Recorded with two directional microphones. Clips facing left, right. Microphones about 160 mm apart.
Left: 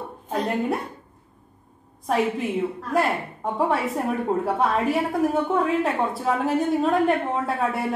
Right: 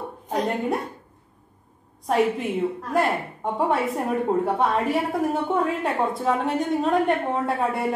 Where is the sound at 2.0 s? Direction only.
Centre (ahead or behind).